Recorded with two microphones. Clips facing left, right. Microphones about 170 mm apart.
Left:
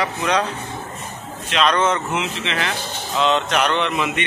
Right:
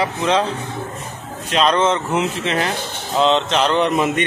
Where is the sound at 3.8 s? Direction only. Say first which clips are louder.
Right 5 dB; 45° right (ahead or behind).